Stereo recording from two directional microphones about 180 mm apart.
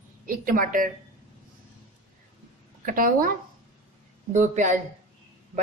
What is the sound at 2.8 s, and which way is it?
A woman's voice, 50° right (ahead or behind).